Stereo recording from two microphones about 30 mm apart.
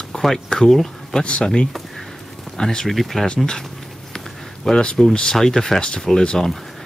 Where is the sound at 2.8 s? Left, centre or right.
Centre.